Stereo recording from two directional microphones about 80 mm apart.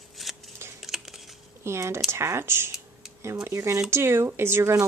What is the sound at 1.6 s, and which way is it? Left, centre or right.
A woman's voice, right.